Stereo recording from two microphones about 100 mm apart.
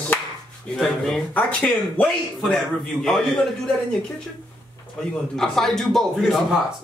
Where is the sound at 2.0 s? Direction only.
5° left (ahead or behind).